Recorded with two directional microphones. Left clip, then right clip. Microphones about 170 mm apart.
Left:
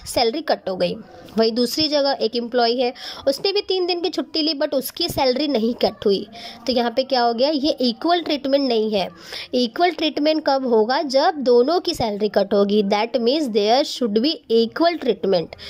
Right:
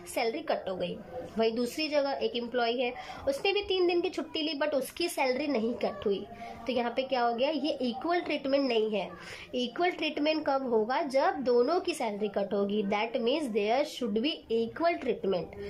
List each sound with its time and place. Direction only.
0.1 s a woman's voice: 30° left (ahead or behind)